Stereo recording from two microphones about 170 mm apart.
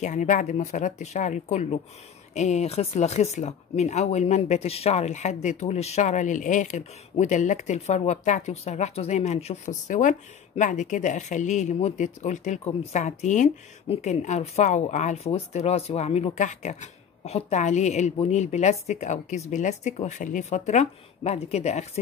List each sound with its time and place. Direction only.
0.0 s speech: 45° left (ahead or behind)